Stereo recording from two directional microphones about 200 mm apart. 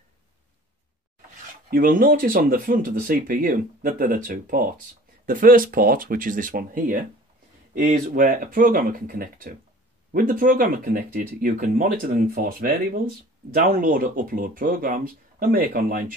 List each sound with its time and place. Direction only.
1.7 s speech: 45° right (ahead or behind)